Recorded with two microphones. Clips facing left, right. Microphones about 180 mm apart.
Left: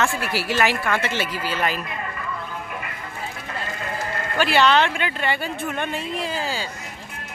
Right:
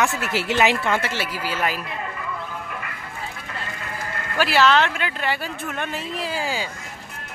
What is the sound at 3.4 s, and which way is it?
Sheep, 30° left (ahead or behind).